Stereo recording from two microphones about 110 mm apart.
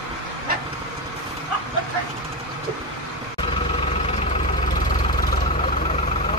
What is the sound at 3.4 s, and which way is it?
Vehicle, 55° left (ahead or behind).